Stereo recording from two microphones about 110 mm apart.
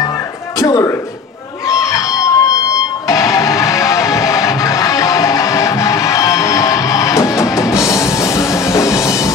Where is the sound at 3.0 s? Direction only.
30° left (ahead or behind).